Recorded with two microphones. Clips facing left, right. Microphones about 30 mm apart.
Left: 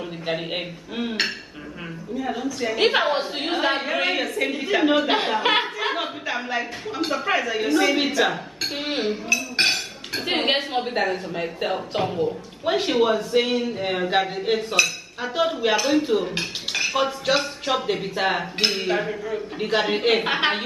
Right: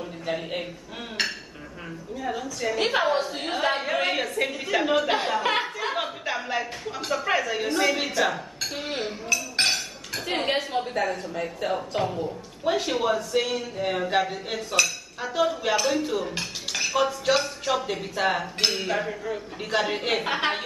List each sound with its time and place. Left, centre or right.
0.3 s cutlery: left
2.1 s speech: centre
2.6 s cutlery: left
3.5 s a woman's voice: centre
5.9 s a sound: centre
6.6 s cutlery: left
7.2 s speech: centre
8.2 s speech: left
10.2 s a woman's voice: left
12.6 s cutlery: left